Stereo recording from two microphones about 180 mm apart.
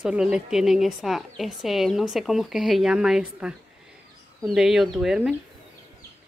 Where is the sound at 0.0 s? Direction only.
5° right (ahead or behind).